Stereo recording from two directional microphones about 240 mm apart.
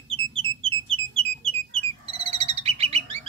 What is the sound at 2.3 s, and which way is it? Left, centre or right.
Bird, right.